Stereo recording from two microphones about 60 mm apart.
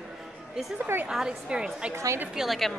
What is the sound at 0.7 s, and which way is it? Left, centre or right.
Speech, right.